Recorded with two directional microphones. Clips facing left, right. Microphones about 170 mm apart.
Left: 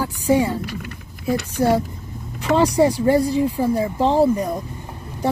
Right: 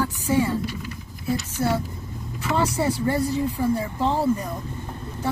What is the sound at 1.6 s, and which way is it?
Speech, 40° left (ahead or behind).